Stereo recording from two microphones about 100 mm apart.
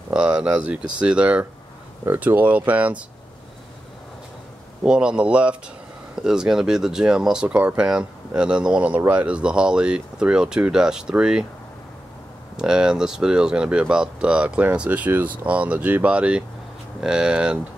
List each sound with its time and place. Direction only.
0.1 s speech: 10° right (ahead or behind)
4.8 s speech: 10° right (ahead or behind)
12.5 s speech: 10° right (ahead or behind)